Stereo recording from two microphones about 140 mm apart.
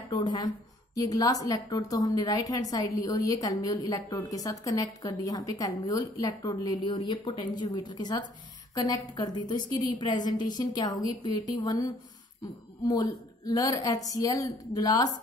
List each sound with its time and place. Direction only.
0.1 s a woman's voice: 30° left (ahead or behind)